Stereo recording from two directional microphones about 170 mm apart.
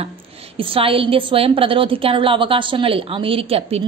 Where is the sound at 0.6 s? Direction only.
30° right (ahead or behind).